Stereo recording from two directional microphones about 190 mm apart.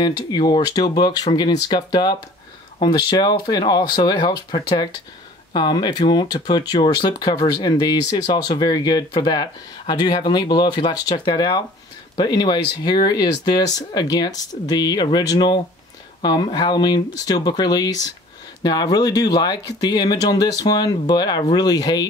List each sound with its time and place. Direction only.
0.0 s speech: 20° left (ahead or behind)